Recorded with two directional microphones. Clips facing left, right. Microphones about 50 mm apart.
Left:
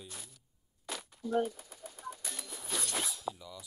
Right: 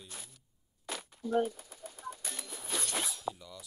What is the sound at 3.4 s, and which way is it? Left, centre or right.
Speech, centre.